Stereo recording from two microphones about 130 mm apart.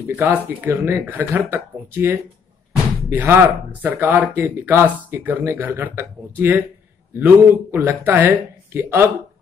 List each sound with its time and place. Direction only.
0.0 s speech: 15° right (ahead or behind)